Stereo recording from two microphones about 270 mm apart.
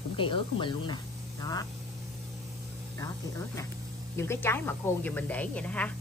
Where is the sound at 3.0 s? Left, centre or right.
Centre.